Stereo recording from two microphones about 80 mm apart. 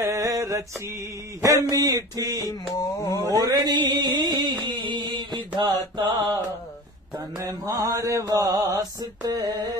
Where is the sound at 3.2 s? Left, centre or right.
Right.